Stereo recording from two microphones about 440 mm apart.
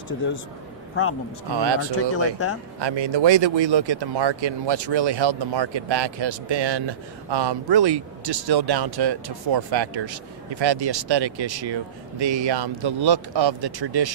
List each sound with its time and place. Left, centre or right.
1.5 s speech: right
1.8 s speech: left
2.8 s speech: right